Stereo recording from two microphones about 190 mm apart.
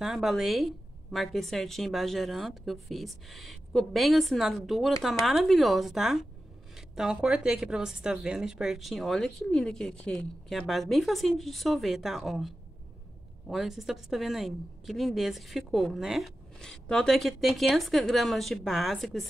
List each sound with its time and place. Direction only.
0.0 s a woman's voice: centre (ahead or behind)